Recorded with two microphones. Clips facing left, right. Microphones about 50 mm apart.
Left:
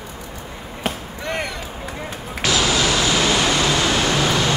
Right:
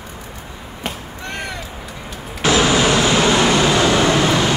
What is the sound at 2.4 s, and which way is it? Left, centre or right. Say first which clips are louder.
Vehicle: right 4 dB; right.